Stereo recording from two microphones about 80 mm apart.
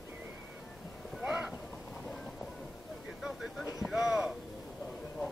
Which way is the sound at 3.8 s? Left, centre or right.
Centre.